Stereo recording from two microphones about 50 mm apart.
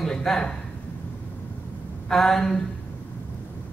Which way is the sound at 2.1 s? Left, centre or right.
Centre.